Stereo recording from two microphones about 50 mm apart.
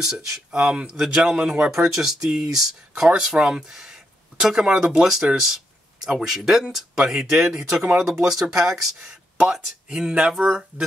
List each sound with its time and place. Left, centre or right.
0.0 s speech: centre